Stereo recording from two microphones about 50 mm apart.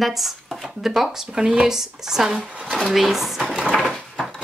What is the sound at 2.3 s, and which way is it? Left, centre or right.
Speech, right.